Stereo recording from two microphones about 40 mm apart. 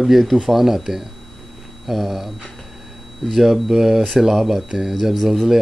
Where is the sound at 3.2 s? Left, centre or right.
Centre.